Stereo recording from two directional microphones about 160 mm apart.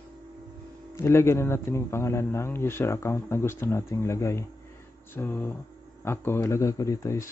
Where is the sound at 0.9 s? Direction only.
15° left (ahead or behind).